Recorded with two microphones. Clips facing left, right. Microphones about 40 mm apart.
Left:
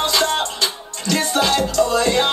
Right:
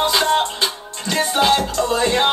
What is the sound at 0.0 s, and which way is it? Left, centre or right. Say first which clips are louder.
Music: right 2 dB; centre.